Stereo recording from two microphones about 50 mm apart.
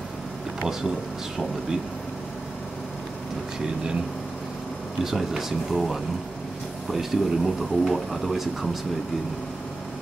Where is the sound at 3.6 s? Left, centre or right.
Centre.